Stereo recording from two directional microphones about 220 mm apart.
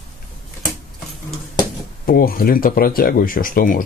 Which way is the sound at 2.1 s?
40° left (ahead or behind).